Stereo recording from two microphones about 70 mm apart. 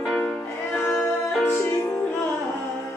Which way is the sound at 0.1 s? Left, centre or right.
Centre.